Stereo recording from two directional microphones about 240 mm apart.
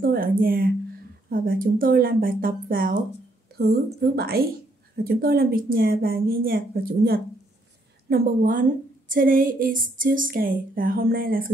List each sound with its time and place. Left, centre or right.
0.0 s a woman's voice: right